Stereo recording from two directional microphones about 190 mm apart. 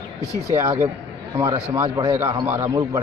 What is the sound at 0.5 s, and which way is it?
A man's voice, 15° right (ahead or behind).